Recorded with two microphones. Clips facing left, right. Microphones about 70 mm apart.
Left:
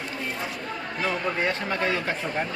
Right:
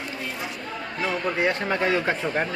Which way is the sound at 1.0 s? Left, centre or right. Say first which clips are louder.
Right 2 dB; centre.